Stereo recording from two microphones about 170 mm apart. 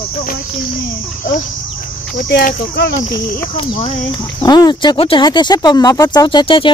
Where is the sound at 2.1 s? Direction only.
60° left (ahead or behind).